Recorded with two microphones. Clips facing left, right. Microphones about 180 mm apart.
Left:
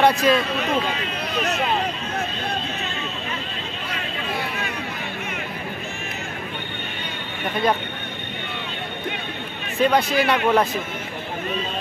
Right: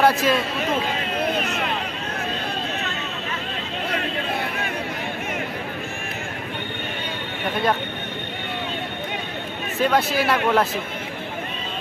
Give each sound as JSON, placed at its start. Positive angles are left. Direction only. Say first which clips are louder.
{"t": 0.0, "sound": "speech", "louder": "left 1 dB", "side_deg": 0}
{"t": 9.8, "sound": "speech", "louder": "left 2 dB", "side_deg": -5}